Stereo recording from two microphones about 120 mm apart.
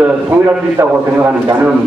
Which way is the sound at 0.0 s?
15° right (ahead or behind).